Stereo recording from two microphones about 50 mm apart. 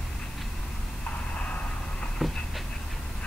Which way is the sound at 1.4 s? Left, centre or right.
Left.